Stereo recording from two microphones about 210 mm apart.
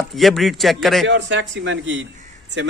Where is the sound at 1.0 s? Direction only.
60° right (ahead or behind).